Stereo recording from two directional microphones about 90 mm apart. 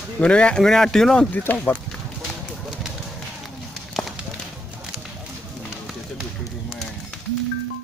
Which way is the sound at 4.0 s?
Centre (ahead or behind).